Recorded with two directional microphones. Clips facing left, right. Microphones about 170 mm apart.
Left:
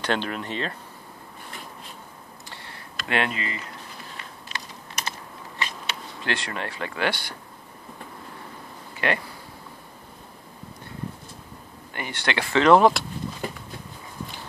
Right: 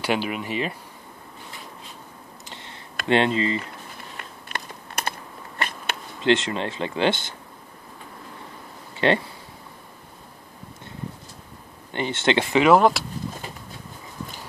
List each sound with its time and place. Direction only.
0.0 s speech: 10° right (ahead or behind)
2.5 s a sound: 20° right (ahead or behind)
3.1 s speech: 25° right (ahead or behind)
4.5 s computer keyboard: 55° right (ahead or behind)
5.6 s a sound: 55° right (ahead or behind)
6.2 s speech: 20° right (ahead or behind)
8.9 s a sound: 25° right (ahead or behind)
11.9 s speech: 25° right (ahead or behind)
12.6 s speech: centre (ahead or behind)